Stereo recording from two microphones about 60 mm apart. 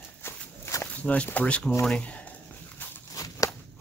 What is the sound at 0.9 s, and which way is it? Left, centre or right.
Speech, left.